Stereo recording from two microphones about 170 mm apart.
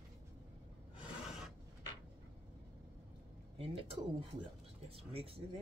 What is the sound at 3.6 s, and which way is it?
Speech, 35° right (ahead or behind).